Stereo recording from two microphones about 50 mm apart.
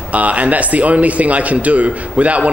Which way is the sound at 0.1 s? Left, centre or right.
Right.